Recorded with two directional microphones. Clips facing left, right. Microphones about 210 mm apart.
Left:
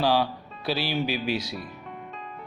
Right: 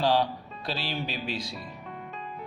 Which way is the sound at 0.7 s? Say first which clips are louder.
Left 6 dB; 5° left (ahead or behind).